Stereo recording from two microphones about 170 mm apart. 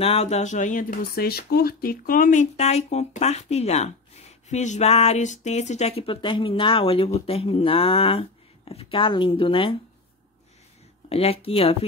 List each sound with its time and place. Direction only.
0.0 s speech: 35° left (ahead or behind)
11.1 s speech: 35° left (ahead or behind)